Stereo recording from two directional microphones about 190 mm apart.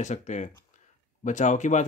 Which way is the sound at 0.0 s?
40° left (ahead or behind).